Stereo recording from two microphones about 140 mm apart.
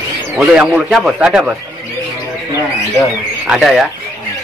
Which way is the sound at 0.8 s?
5° right (ahead or behind).